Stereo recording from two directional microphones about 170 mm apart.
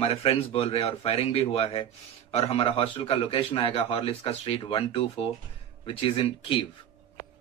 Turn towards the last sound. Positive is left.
turn(degrees=30)  # may be behind; listen again after turning